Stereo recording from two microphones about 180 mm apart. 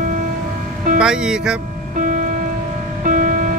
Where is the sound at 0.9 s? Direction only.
5° right (ahead or behind).